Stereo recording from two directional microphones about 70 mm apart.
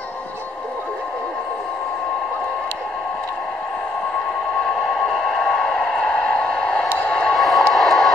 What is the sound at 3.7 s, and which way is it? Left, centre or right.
Radio, left.